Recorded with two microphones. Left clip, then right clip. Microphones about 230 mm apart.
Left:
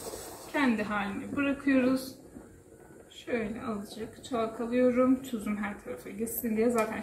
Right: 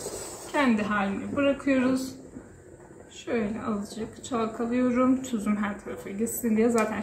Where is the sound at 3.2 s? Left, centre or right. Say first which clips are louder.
Right 4 dB; centre.